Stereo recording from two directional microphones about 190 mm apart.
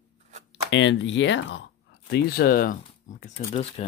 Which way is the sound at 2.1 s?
50° left (ahead or behind).